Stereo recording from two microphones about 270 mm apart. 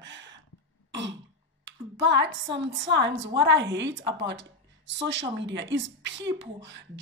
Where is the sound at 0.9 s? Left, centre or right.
Right.